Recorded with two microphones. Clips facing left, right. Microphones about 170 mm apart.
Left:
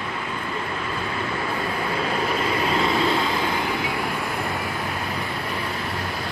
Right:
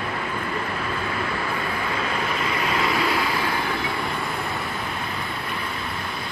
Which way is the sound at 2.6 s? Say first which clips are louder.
Left 1 dB; 30° left (ahead or behind).